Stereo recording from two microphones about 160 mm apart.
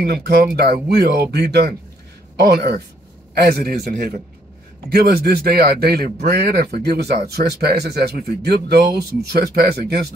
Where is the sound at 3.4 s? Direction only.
80° right.